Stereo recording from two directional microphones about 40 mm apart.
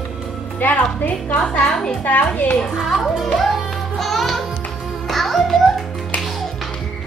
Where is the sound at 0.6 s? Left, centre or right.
Left.